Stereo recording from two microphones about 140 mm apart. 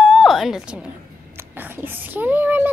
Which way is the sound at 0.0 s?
Centre (ahead or behind).